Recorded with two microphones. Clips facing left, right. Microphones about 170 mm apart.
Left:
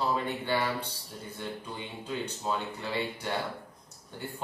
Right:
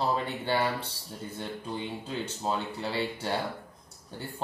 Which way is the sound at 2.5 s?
30° right (ahead or behind).